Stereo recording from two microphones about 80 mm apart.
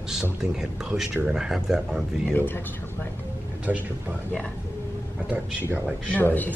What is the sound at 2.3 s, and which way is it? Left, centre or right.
Speech, left.